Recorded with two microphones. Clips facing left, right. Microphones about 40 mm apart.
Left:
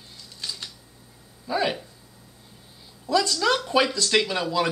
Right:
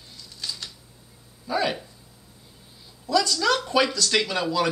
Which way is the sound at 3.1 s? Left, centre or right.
Left.